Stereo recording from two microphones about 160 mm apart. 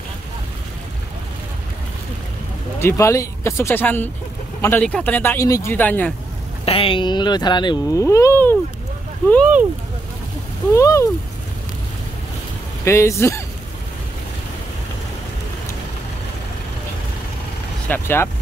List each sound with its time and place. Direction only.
2.8 s speech: 15° left (ahead or behind)
6.6 s speech: 35° left (ahead or behind)
8.0 s speech: 20° left (ahead or behind)
10.7 s speech: 20° left (ahead or behind)
12.8 s speech: 15° left (ahead or behind)
17.8 s speech: 15° left (ahead or behind)